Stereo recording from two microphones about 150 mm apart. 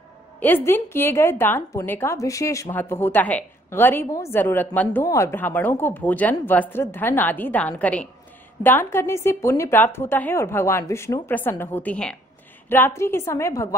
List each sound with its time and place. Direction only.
0.4 s a woman's voice: 15° left (ahead or behind)